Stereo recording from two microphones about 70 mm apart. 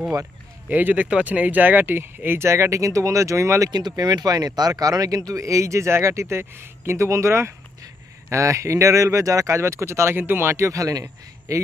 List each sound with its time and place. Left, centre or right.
0.7 s speech: right
3.7 s speech: right
5.4 s speech: right